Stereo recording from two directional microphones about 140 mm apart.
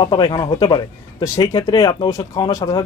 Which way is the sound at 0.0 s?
35° left (ahead or behind).